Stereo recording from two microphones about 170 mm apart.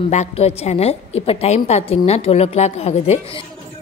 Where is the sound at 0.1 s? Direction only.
40° left (ahead or behind).